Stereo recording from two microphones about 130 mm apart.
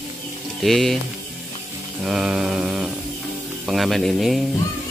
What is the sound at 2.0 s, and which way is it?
Speech, 5° right (ahead or behind).